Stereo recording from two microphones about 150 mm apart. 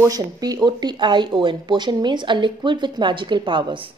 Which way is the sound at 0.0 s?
25° right (ahead or behind).